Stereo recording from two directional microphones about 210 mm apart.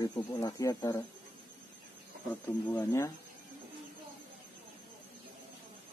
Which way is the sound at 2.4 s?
15° left (ahead or behind).